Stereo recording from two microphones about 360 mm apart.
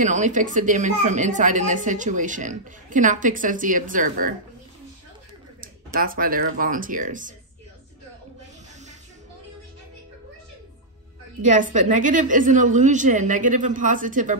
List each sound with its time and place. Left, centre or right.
0.0 s a woman's voice: centre
5.9 s a woman's voice: right
11.4 s a woman's voice: right